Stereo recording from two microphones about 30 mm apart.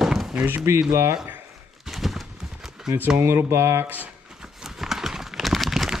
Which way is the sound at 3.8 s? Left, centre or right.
Right.